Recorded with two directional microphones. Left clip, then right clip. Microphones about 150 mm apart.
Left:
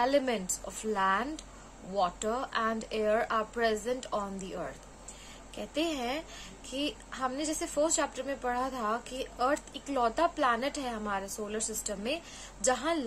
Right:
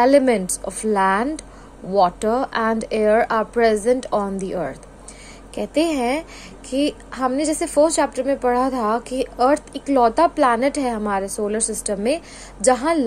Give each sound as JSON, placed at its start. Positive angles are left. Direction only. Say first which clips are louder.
{"t": 0.0, "sound": "a woman's voice", "louder": "right 14 dB", "side_deg": -45}